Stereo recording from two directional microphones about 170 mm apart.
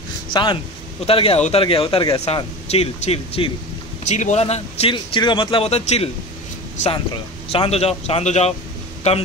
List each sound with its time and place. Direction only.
0.3 s speech: 25° left (ahead or behind)
7.5 s speech: 35° left (ahead or behind)